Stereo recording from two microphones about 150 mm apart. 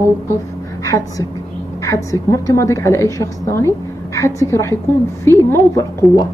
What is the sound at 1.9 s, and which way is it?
A woman's voice, 20° left (ahead or behind).